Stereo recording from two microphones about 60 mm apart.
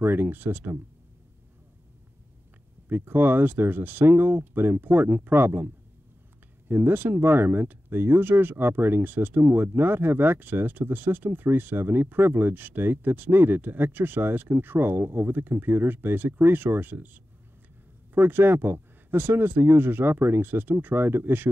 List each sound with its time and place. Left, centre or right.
0.0 s speech: right
2.9 s speech: right
6.7 s speech: right